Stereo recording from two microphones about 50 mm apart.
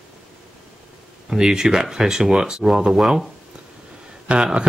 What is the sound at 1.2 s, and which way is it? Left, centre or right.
Speech, centre.